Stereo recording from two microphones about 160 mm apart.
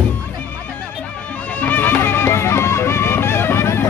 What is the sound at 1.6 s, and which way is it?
Music, 10° left (ahead or behind).